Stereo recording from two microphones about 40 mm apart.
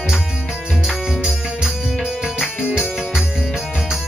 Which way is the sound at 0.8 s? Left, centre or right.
Centre.